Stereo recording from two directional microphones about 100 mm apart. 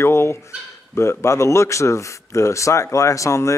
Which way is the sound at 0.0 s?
25° left (ahead or behind).